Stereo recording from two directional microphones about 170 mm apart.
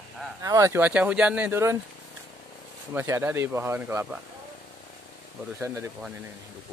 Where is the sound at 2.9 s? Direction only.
15° right (ahead or behind).